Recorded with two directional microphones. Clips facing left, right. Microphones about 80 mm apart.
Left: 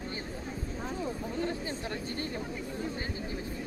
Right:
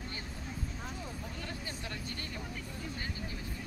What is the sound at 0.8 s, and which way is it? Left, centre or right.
Vehicle, left.